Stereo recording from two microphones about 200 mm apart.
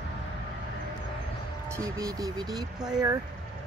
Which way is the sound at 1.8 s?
15° right (ahead or behind).